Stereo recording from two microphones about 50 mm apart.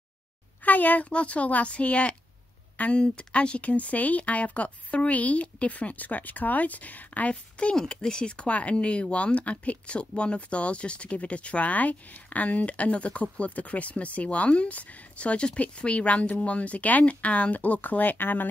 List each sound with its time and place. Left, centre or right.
0.7 s a child's voice: left